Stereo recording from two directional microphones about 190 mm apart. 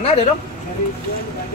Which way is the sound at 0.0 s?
35° left (ahead or behind).